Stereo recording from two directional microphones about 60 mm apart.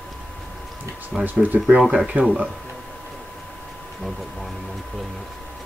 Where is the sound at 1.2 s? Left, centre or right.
Right.